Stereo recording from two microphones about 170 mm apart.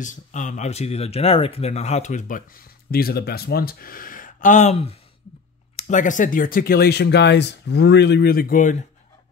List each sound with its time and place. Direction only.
0.0 s speech: 50° left (ahead or behind)